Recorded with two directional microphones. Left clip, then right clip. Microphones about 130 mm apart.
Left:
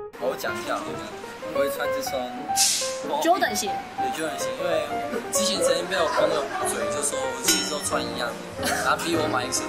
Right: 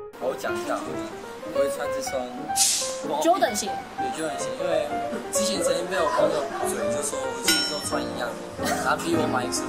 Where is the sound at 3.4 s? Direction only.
50° right (ahead or behind).